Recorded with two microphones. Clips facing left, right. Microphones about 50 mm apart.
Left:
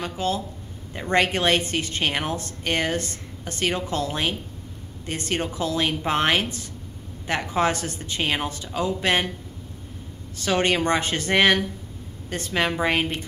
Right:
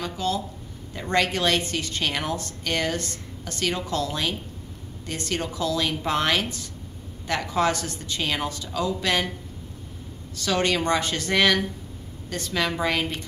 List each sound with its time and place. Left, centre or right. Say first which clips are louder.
0.1 s a woman's voice: left 1 dB; left
10.3 s a woman's voice: left 2 dB; left